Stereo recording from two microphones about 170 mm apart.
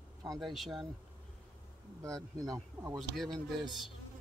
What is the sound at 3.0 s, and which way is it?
Speech, centre (ahead or behind).